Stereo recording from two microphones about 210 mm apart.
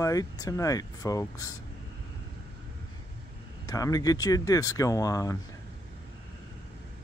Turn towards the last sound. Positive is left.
turn(degrees=15)  # may be behind; listen again after turning